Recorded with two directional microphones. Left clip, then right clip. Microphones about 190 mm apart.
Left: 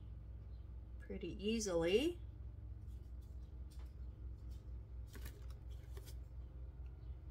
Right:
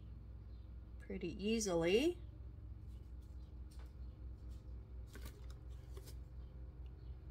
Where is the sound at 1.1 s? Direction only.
30° right (ahead or behind).